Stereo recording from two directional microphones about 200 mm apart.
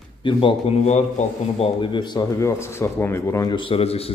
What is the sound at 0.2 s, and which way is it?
A man's voice, 25° left (ahead or behind).